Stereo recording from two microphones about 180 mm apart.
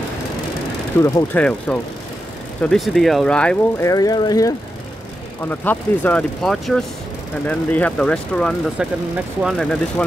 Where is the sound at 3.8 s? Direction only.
20° left (ahead or behind).